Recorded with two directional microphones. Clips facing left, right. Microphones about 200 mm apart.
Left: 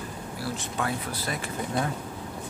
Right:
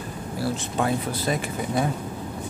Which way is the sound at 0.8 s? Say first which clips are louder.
Right 7 dB; 20° right (ahead or behind).